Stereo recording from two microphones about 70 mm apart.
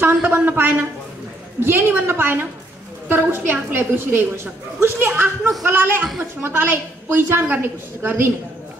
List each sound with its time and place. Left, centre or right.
0.0 s a woman's voice: right